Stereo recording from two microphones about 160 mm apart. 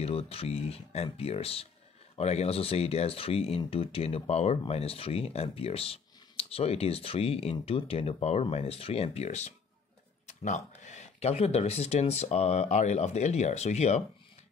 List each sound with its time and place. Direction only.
0.0 s speech: 40° left (ahead or behind)